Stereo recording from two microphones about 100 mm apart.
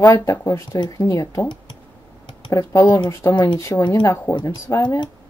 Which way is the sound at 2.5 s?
30° left (ahead or behind).